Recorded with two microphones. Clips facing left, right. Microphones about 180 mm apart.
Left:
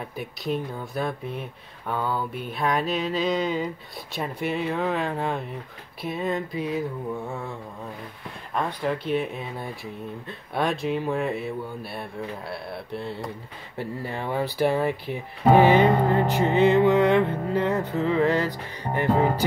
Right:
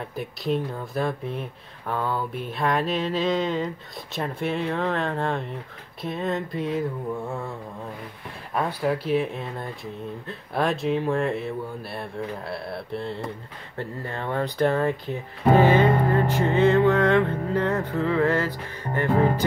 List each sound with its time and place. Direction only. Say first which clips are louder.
0.0 s speech: right 2 dB; centre (ahead or behind)
8.5 s speech: right 2 dB; 5° right (ahead or behind)
13.7 s music: left 1 dB; 10° left (ahead or behind)